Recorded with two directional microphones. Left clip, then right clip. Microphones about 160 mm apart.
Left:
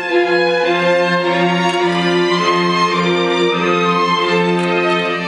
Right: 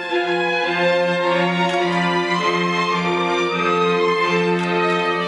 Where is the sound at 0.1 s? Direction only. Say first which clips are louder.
Left 6 dB; 20° left (ahead or behind).